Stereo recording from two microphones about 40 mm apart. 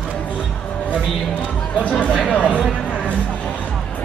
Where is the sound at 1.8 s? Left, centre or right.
Left.